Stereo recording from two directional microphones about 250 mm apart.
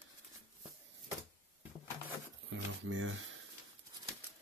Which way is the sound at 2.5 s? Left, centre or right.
Right.